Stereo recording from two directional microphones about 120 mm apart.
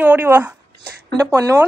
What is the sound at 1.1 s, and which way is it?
Speech, 30° right (ahead or behind).